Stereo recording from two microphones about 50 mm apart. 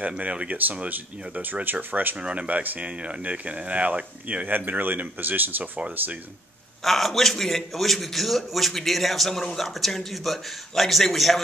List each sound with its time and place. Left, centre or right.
0.2 s speech: right
0.8 s speech: right
2.1 s speech: right
3.0 s speech: right
4.5 s speech: right
6.8 s a man's voice: centre